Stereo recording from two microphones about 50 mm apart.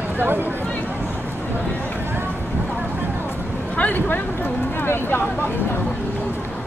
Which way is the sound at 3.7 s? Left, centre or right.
Left.